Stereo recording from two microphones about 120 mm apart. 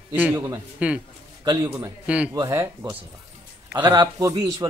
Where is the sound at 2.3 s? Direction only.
25° right (ahead or behind).